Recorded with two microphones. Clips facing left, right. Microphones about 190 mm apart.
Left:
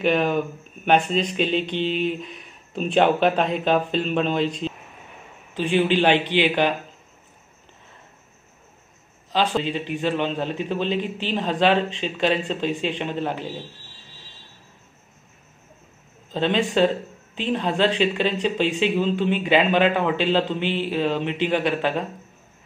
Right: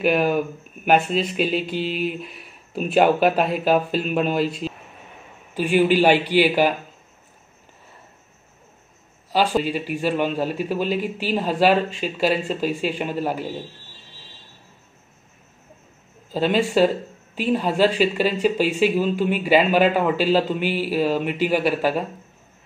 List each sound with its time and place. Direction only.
0.0 s speech: 5° right (ahead or behind)
9.3 s speech: 10° right (ahead or behind)
16.3 s speech: 5° right (ahead or behind)